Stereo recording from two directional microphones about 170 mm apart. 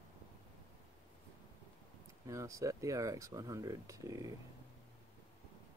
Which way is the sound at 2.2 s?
20° right (ahead or behind).